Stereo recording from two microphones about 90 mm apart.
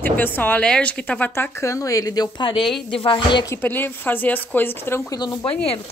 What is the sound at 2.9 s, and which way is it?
Speech, 70° left (ahead or behind).